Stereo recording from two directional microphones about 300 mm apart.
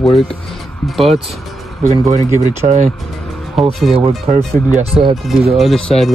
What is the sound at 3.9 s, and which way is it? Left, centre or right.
Speech, centre.